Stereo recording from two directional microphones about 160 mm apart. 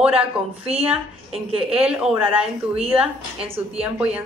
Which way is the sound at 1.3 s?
35° right (ahead or behind).